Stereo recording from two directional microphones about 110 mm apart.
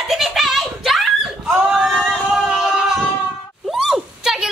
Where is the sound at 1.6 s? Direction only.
5° right (ahead or behind).